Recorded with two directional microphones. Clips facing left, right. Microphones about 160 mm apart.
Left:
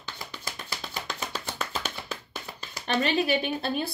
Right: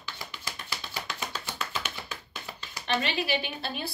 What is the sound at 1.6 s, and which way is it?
Tap, 40° left (ahead or behind).